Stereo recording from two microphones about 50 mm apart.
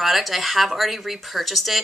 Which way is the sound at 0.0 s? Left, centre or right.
Centre.